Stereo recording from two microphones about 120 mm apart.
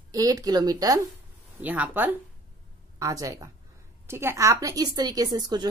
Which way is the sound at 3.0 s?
30° right (ahead or behind).